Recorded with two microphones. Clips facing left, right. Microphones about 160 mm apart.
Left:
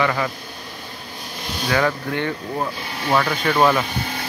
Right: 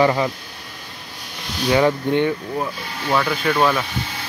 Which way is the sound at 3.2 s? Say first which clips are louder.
Even; centre (ahead or behind).